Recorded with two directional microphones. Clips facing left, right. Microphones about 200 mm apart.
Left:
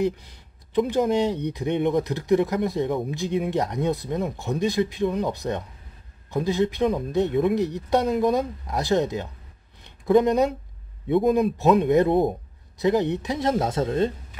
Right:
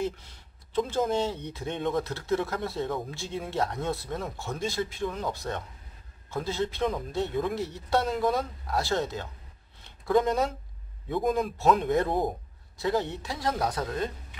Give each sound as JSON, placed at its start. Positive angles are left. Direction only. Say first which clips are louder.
{"t": 0.0, "sound": "speech", "louder": "left 7 dB", "side_deg": 15}
{"t": 9.8, "sound": "a sound", "louder": "left 6 dB", "side_deg": 20}
{"t": 11.1, "sound": "speech", "louder": "left 7 dB", "side_deg": 20}